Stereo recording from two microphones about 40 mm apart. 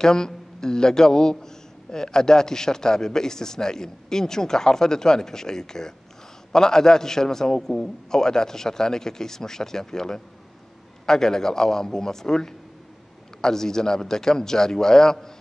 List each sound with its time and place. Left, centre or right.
0.0 s a man's voice: centre